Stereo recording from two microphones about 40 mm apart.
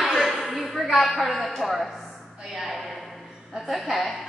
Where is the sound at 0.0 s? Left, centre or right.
Centre.